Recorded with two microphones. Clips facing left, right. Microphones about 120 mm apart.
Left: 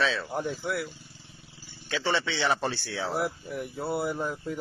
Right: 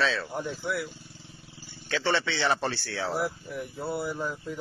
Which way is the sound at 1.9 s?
5° left (ahead or behind).